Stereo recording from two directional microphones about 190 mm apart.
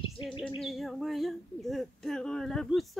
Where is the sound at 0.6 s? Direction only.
Centre (ahead or behind).